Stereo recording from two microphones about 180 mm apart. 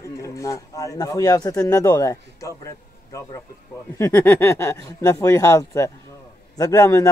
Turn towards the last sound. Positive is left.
turn(degrees=20)  # may be behind; listen again after turning